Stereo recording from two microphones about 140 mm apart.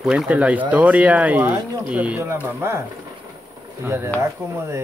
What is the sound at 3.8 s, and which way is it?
Speech, 20° right (ahead or behind).